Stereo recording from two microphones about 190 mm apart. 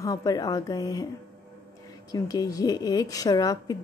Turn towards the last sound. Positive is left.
turn(degrees=20)  # may be behind; listen again after turning